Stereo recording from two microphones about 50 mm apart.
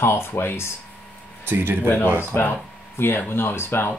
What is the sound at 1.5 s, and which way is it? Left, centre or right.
Speech, right.